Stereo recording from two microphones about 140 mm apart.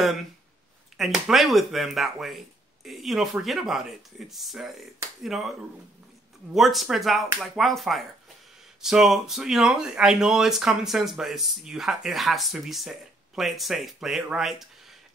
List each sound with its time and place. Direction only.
0.9 s speech: centre (ahead or behind)
6.5 s speech: centre (ahead or behind)